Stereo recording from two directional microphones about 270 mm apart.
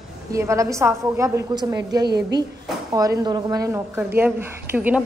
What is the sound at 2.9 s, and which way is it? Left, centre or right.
A woman's voice, centre.